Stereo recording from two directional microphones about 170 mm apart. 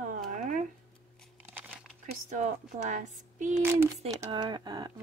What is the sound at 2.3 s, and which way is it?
Speech, 45° right (ahead or behind).